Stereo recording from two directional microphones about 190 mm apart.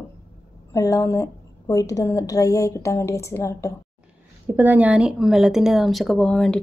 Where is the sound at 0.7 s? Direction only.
15° left (ahead or behind).